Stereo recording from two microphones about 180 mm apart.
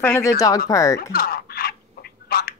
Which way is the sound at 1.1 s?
55° left (ahead or behind).